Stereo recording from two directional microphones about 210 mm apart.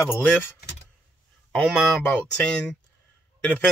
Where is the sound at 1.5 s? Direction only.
5° left (ahead or behind).